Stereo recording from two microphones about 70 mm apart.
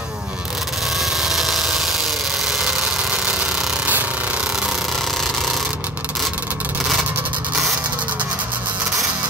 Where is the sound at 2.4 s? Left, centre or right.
Centre.